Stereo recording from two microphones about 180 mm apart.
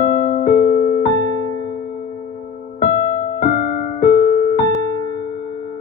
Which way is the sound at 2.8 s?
45° left (ahead or behind).